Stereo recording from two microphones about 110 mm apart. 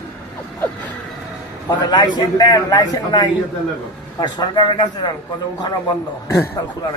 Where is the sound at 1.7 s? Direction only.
40° left (ahead or behind).